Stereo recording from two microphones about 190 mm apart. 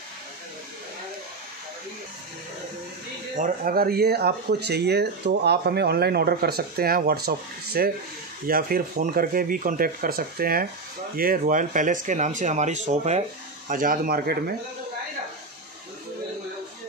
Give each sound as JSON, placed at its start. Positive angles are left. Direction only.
{"t": 3.3, "sound": "speech", "side_deg": -45}
{"t": 13.7, "sound": "speech", "side_deg": -45}